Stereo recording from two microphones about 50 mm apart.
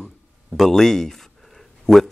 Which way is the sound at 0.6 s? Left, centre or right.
Centre.